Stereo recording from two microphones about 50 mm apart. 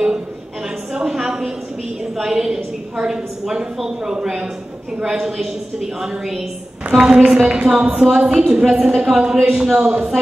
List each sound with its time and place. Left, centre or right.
0.9 s a woman's voice: centre
6.9 s a woman's voice: centre